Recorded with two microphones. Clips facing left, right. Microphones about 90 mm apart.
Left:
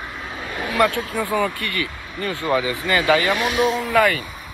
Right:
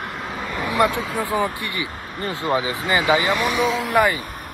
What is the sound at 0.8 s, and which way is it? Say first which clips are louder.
Speech: left 1 dB; 20° right (ahead or behind).